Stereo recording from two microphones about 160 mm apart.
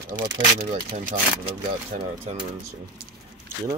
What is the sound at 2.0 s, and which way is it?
Speech, 35° right (ahead or behind).